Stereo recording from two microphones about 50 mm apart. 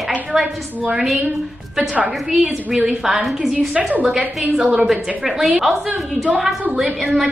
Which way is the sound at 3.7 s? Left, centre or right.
Right.